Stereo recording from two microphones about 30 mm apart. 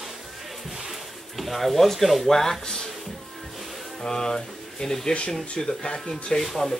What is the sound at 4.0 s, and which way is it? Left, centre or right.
Speech, left.